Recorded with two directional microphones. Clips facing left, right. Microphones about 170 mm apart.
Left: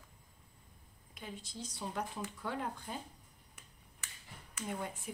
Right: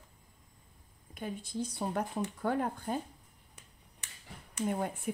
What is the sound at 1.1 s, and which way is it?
Speech, 55° right (ahead or behind).